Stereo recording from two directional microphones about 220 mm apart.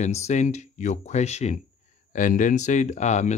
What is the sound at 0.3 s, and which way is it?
Speech, 30° left (ahead or behind).